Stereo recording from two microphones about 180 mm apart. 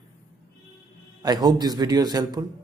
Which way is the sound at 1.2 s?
20° right (ahead or behind).